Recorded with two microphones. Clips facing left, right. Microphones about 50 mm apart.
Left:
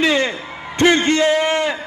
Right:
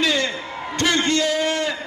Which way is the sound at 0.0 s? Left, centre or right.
Left.